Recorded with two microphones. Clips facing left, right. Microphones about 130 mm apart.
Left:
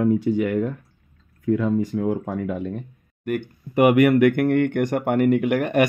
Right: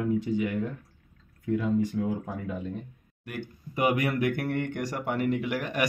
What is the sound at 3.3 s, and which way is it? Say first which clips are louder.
Speech: left 11 dB; 60° left (ahead or behind).